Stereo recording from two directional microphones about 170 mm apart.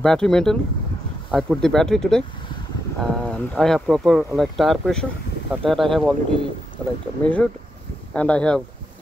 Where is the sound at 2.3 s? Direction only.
30° left (ahead or behind).